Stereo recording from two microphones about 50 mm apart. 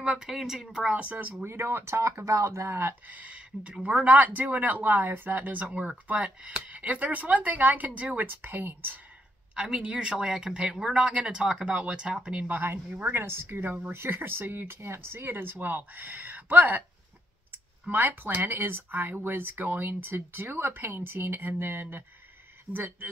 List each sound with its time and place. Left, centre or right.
0.0 s speech: centre
1.4 s speech: right
3.1 s speech: right
9.6 s speech: centre
11.6 s speech: right
12.5 s speech: right
14.8 s speech: right
15.2 s speech: right
17.8 s speech: right